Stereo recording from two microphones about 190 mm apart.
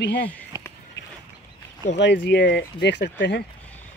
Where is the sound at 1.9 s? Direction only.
70° left (ahead or behind).